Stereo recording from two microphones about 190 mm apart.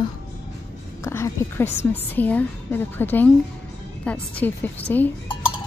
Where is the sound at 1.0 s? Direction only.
15° left (ahead or behind).